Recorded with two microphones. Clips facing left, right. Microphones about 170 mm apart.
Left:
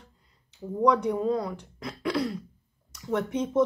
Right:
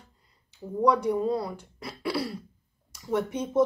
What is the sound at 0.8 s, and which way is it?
Speech, 10° right (ahead or behind).